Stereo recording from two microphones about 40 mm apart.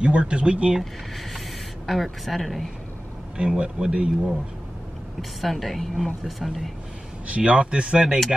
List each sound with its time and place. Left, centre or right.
0.0 s speech: right
1.9 s speech: centre
3.3 s speech: right
5.4 s speech: centre
7.2 s speech: right